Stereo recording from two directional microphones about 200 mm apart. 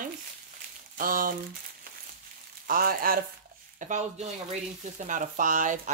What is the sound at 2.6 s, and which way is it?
Speech, 45° right (ahead or behind).